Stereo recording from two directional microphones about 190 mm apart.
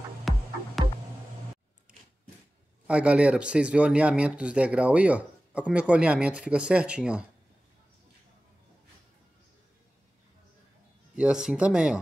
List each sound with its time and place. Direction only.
0.3 s music: centre (ahead or behind)
2.9 s speech: 5° right (ahead or behind)
11.1 s speech: 5° right (ahead or behind)